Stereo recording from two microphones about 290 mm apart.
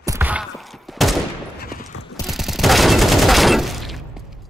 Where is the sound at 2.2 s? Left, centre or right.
Centre.